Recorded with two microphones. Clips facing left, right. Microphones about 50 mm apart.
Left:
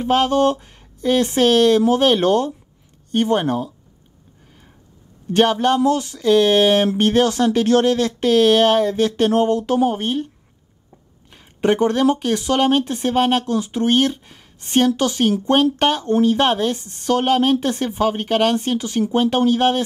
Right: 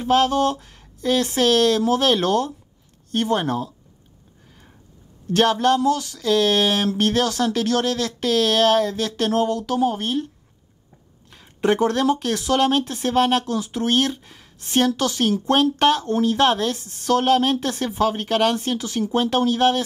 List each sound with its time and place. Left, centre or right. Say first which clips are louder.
0.0 s speech: left 2 dB; centre
5.3 s speech: left 2 dB; centre
11.2 s a sound: left 2 dB; centre
11.8 s speech: left 3 dB; centre